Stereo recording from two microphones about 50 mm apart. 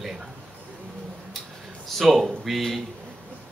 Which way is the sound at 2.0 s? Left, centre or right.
Centre.